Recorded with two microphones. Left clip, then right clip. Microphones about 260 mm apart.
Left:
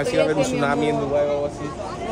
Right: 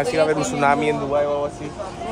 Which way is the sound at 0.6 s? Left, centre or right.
Right.